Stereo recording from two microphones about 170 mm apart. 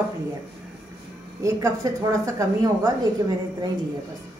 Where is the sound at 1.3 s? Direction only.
20° right (ahead or behind).